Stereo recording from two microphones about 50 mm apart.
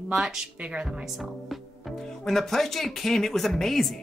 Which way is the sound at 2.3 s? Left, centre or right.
Centre.